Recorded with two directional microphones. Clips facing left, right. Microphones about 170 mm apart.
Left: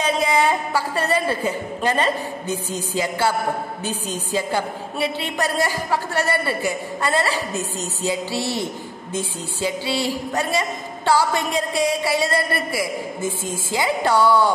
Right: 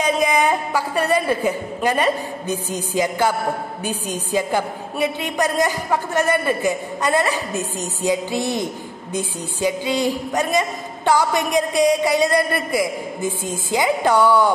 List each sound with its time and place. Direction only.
0.0 s a woman's voice: 15° right (ahead or behind)